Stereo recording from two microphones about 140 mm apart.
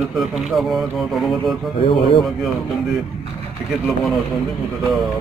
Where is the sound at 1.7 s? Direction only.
40° left (ahead or behind).